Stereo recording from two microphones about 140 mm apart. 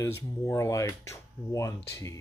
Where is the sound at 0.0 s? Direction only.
20° left (ahead or behind).